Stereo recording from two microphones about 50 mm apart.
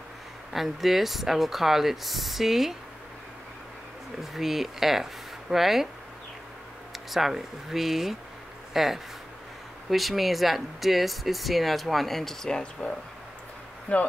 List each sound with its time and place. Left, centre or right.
0.5 s speech: centre
4.2 s speech: centre
6.9 s speech: centre
13.9 s speech: left